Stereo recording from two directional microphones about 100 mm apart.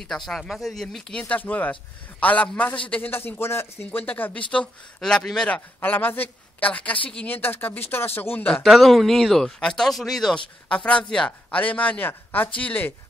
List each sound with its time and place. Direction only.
0.3 s speech: 5° left (ahead or behind)
5.8 s a woman's voice: 20° left (ahead or behind)
8.6 s speech: centre (ahead or behind); by 12.9 s 15° left (ahead or behind)